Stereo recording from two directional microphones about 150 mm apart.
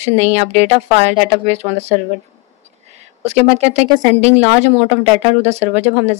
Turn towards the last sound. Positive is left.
turn(degrees=-45)  # may be behind; listen again after turning